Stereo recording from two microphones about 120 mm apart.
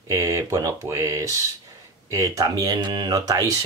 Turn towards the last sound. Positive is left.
turn(degrees=-30)  # may be behind; listen again after turning